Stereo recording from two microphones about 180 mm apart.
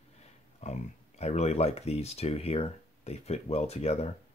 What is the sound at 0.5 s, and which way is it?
Speech, 40° left (ahead or behind).